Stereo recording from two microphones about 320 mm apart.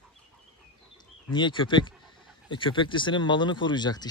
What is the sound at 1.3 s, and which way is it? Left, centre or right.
Speech, centre.